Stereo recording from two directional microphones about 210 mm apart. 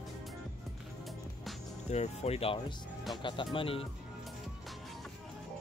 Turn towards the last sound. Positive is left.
turn(degrees=25)  # may be behind; listen again after turning